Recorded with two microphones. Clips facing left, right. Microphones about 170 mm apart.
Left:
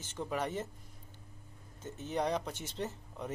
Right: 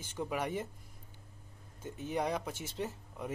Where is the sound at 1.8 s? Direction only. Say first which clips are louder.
Even; 10° right (ahead or behind).